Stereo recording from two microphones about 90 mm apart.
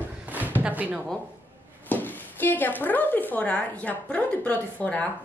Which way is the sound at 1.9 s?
20° left (ahead or behind).